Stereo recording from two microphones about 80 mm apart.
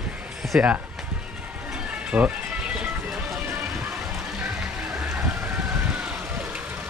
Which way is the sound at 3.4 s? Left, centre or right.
Right.